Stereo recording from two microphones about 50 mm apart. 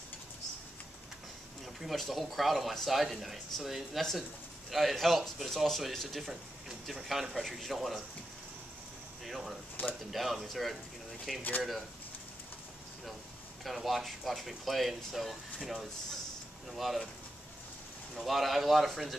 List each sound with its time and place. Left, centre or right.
1.8 s speech: centre
9.2 s a sound: centre
9.8 s speech: left
10.1 s speech: centre
13.7 s speech: centre
18.1 s speech: centre